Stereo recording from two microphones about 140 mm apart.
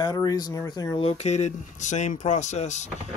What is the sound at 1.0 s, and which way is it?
Speech, 45° left (ahead or behind).